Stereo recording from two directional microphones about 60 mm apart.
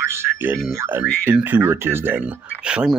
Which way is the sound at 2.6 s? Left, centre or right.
Centre.